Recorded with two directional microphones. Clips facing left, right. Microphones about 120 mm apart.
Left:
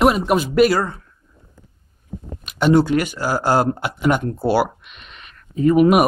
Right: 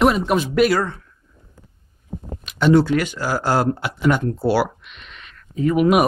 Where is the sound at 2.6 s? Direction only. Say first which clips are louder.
Even; 15° left (ahead or behind).